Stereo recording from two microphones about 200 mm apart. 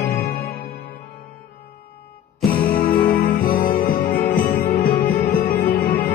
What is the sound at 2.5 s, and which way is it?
Music, 45° left (ahead or behind).